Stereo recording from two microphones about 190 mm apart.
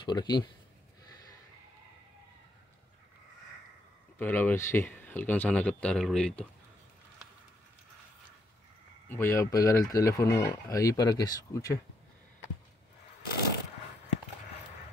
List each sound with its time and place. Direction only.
0.0 s speech: 20° left (ahead or behind)
4.2 s speech: 10° left (ahead or behind)
9.1 s speech: 15° left (ahead or behind)